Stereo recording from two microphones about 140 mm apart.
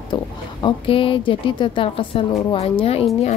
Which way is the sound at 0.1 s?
35° left (ahead or behind).